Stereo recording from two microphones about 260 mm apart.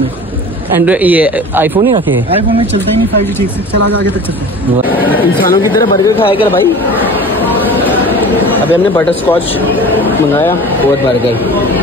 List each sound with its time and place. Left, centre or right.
0.7 s speech: centre
4.8 s speech: centre
5.1 s speech: centre
8.7 s speech: centre